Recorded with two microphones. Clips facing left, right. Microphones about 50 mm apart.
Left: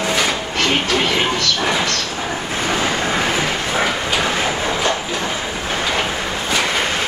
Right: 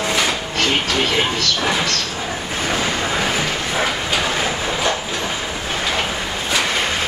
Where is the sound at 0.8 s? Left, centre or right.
Centre.